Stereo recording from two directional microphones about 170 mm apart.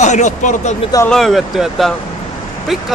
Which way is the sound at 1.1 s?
Centre (ahead or behind).